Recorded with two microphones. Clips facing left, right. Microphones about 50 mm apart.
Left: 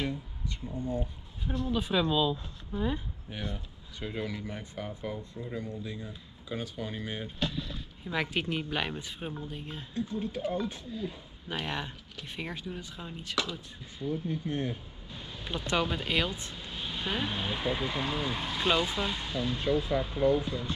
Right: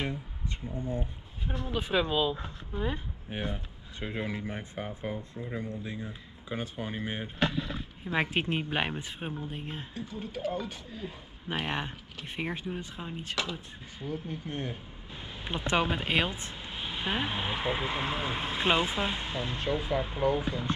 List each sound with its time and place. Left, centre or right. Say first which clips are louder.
0.7 s speech: left 1 dB; centre
1.5 s speech: left 1 dB; right
10.1 s speech: left 2 dB; centre
10.5 s speech: left 2 dB; right